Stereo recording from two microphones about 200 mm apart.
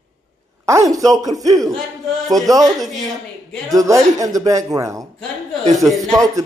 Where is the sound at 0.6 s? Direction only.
15° right (ahead or behind).